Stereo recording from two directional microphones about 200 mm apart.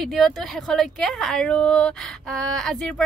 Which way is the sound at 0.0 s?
Centre (ahead or behind).